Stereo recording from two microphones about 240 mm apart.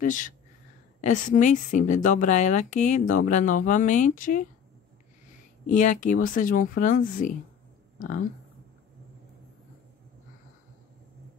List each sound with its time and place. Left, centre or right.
0.0 s a woman's voice: left
5.7 s a woman's voice: left